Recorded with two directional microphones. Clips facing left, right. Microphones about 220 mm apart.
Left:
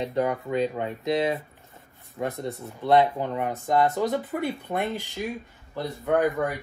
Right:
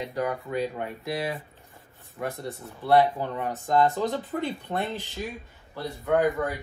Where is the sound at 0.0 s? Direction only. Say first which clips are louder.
Left 4 dB; 25° left (ahead or behind).